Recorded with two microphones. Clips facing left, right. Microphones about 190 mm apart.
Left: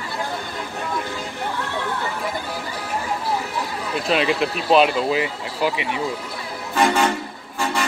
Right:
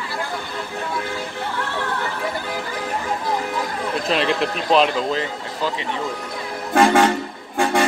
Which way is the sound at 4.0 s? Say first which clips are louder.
Left 1 dB; centre (ahead or behind).